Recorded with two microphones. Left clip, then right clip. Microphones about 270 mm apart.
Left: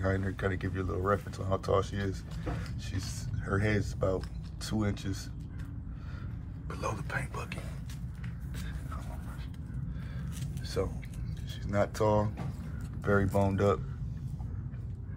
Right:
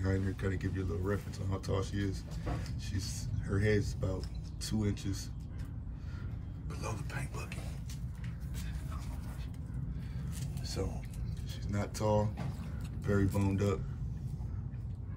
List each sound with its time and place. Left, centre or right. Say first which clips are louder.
0.0 s speech: left 5 dB; centre
6.7 s speech: left 7 dB; centre
11.6 s speech: left 7 dB; centre